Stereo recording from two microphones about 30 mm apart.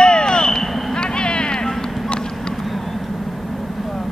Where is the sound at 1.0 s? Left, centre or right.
Left.